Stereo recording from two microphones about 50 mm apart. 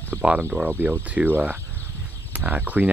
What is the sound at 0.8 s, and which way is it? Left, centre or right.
Speech, right.